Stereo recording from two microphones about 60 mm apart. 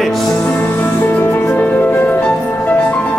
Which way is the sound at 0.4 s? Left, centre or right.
Left.